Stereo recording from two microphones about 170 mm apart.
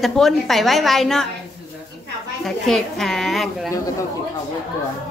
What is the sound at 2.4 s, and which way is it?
A woman's voice, centre (ahead or behind).